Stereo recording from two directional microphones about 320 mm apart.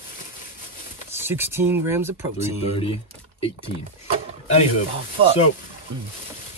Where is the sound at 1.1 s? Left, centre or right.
Centre.